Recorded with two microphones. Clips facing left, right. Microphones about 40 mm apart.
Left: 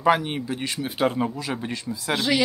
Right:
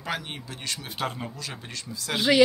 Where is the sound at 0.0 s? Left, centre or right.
Centre.